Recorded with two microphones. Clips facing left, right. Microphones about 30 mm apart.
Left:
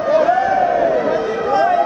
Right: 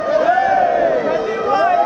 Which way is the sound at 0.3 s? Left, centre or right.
Centre.